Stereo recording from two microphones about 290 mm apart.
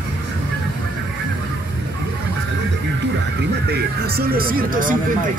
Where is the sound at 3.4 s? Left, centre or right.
Right.